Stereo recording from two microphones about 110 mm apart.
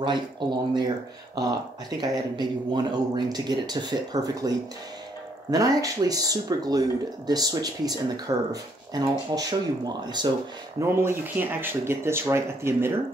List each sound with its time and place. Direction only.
0.0 s speech: 45° right (ahead or behind)
10.8 s speech: 20° right (ahead or behind)